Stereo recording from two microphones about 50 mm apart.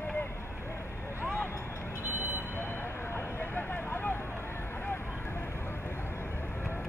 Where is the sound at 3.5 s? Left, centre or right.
Left.